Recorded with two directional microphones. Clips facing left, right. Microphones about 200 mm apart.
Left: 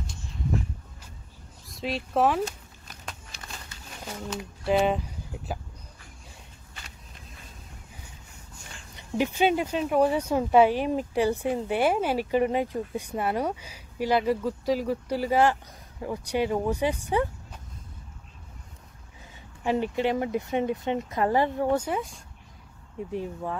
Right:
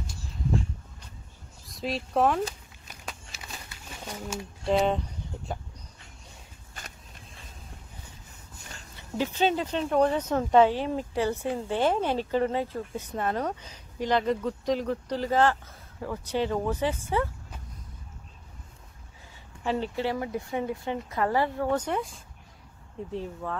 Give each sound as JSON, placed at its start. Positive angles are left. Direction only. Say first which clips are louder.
{"t": 1.7, "sound": "speech", "louder": "even", "side_deg": 0}
{"t": 3.1, "sound": "a sound", "louder": "right 1 dB", "side_deg": -5}
{"t": 4.6, "sound": "vehicle", "louder": "left 1 dB", "side_deg": 5}
{"t": 8.9, "sound": "speech", "louder": "left 3 dB", "side_deg": 15}
{"t": 19.6, "sound": "speech", "louder": "left 3 dB", "side_deg": 15}
{"t": 23.1, "sound": "speech", "louder": "left 2 dB", "side_deg": 15}